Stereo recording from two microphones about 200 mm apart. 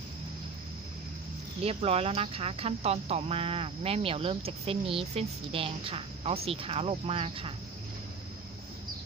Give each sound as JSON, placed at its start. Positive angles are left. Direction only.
{"t": 1.6, "sound": "speech", "side_deg": -30}